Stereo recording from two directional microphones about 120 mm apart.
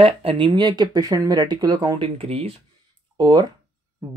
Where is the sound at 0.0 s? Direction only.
50° right (ahead or behind).